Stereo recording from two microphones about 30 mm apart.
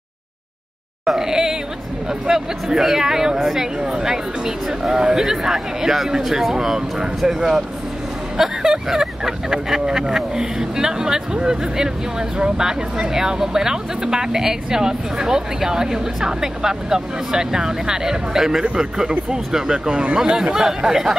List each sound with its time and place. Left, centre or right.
1.1 s a sound: centre
2.0 s speech: centre
19.9 s speech: right
20.2 s speech: right